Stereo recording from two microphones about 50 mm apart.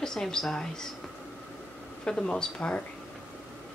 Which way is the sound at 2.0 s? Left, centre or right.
Centre.